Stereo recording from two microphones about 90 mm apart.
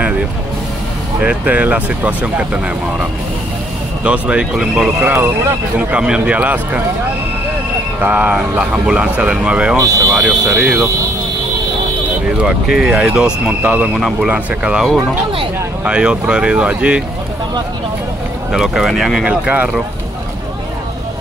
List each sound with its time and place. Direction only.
1.2 s speech: 15° right (ahead or behind)
4.0 s speech: 15° right (ahead or behind)
8.0 s speech: 15° right (ahead or behind)
9.8 s speech: 40° right (ahead or behind)
10.1 s speech: 10° right (ahead or behind)
12.7 s speech: 10° right (ahead or behind)
18.5 s speech: 5° right (ahead or behind)
19.2 s speech: 15° right (ahead or behind)